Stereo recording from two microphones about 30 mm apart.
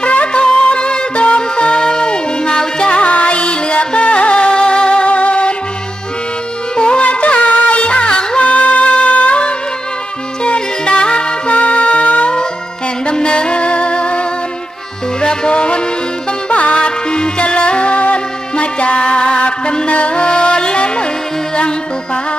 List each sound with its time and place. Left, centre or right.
0.0 s music: left
3.1 s music: left
5.0 s music: left
7.0 s music: left
8.4 s music: left
10.4 s music: left
11.5 s music: left
13.0 s music: left